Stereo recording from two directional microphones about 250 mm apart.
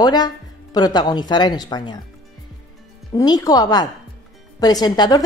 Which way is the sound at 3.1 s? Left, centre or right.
Centre.